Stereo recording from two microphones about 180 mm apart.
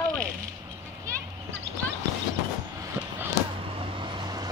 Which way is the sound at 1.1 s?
15° right (ahead or behind).